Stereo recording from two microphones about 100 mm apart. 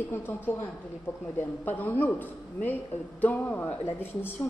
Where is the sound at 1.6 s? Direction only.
20° left (ahead or behind).